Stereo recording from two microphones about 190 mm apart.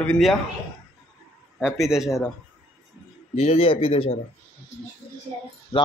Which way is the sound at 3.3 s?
30° left (ahead or behind).